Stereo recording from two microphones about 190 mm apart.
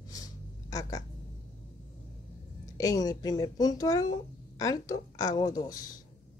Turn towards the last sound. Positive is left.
turn(degrees=20)  # may be behind; listen again after turning